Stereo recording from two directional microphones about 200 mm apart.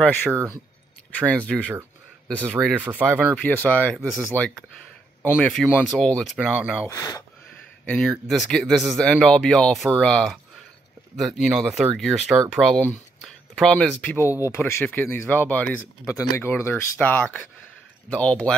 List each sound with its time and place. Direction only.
0.3 s speech: 15° right (ahead or behind)
1.3 s speech: 10° left (ahead or behind)
2.5 s speech: 10° right (ahead or behind)
3.4 s speech: 5° left (ahead or behind)
6.9 s speech: 15° left (ahead or behind)
7.8 s speech: 5° left (ahead or behind)